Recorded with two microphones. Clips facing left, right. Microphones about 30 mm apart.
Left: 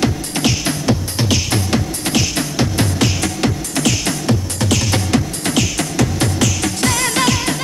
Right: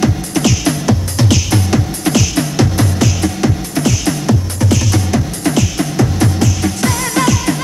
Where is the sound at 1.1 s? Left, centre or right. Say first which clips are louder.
Right 3 dB; centre.